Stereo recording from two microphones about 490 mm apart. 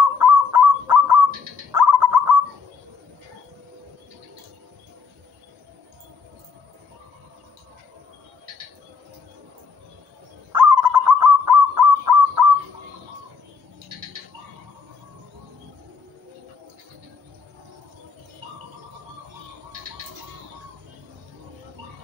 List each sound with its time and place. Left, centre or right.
0.2 s goose: right
10.5 s goose: right